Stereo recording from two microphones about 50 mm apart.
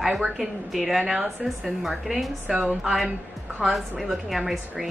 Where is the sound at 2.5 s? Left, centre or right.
Right.